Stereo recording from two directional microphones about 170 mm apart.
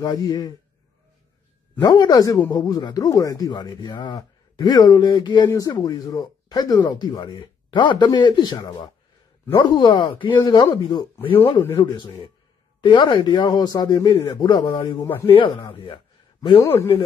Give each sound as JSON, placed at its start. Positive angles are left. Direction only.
{"t": 0.0, "sound": "speech", "side_deg": 20}
{"t": 1.8, "sound": "a man's voice", "side_deg": 25}
{"t": 16.6, "sound": "speech", "side_deg": 15}